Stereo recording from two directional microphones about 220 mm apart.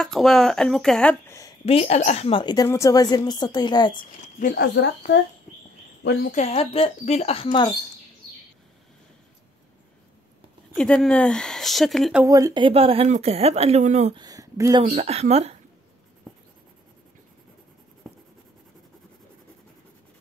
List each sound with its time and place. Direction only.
0.0 s speech: centre (ahead or behind)
1.7 s a woman's voice: 30° left (ahead or behind)
4.0 s speech: 40° left (ahead or behind)
6.0 s speech: 40° left (ahead or behind)
6.4 s a woman's voice: 25° left (ahead or behind)
10.8 s speech: 5° left (ahead or behind)
12.3 s speech: 15° right (ahead or behind); by 14.1 s 30° right (ahead or behind)
14.1 s speech: 15° right (ahead or behind)